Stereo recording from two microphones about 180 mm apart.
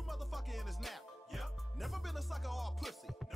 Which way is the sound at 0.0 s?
Centre (ahead or behind).